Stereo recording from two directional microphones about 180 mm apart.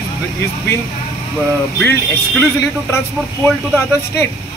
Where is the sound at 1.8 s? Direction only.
15° left (ahead or behind).